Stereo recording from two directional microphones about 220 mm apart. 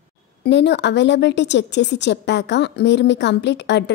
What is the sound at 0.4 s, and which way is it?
A woman's voice, 50° left (ahead or behind).